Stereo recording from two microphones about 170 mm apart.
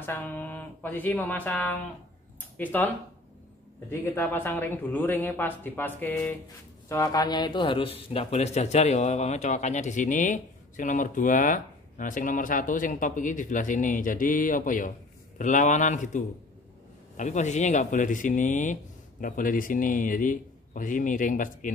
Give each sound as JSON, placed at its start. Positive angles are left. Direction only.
{"t": 0.0, "sound": "speech", "side_deg": 10}
{"t": 4.0, "sound": "speech", "side_deg": 10}
{"t": 6.9, "sound": "a man's voice", "side_deg": 20}